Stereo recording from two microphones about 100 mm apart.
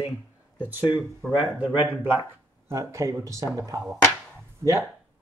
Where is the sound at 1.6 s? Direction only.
20° right (ahead or behind).